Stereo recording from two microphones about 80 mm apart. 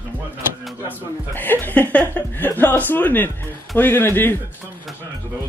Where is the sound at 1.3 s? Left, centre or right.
Left.